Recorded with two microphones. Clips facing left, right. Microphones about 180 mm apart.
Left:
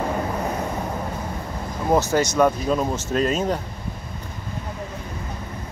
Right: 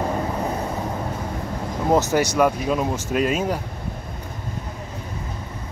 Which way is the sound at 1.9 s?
20° right (ahead or behind).